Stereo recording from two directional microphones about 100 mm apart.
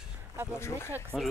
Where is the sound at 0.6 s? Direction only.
25° left (ahead or behind).